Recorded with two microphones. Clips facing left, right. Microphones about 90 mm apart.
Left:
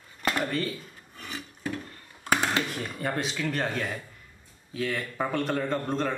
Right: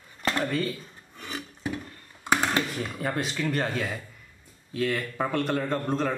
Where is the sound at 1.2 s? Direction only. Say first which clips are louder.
Right 2 dB; 20° right (ahead or behind).